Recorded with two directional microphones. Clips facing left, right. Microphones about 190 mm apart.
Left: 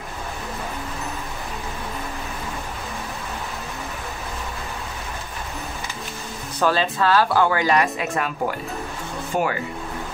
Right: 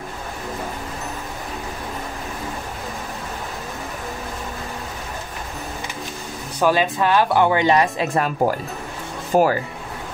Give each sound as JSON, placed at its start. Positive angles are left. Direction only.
{"t": 6.6, "sound": "a woman's voice", "side_deg": -15}